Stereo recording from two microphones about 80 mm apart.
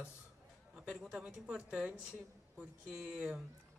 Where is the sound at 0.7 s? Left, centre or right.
Centre.